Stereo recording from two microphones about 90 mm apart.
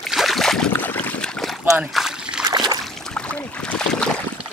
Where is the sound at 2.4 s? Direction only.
50° right (ahead or behind).